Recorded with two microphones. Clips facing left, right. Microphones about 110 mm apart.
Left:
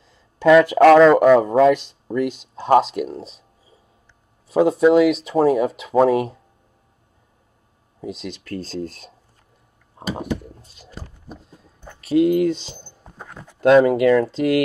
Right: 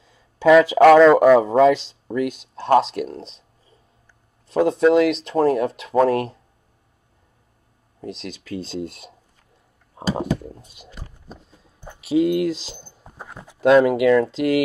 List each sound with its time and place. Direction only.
0.5 s speech: centre (ahead or behind)
8.0 s speech: 5° left (ahead or behind)
10.0 s speech: 30° right (ahead or behind)
12.0 s speech: centre (ahead or behind)